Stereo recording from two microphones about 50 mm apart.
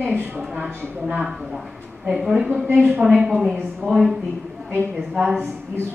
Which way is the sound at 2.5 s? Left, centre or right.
Right.